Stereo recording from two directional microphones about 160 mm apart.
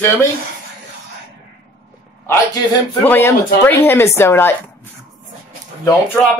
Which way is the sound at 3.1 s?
15° left (ahead or behind).